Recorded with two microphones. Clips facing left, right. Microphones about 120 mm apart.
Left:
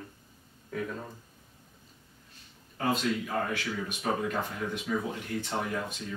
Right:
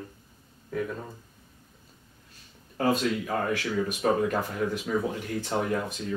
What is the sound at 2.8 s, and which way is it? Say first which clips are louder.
Speech: right 4 dB; 40° right (ahead or behind).